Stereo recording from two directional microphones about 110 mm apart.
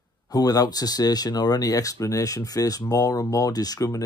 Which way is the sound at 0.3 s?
35° left (ahead or behind).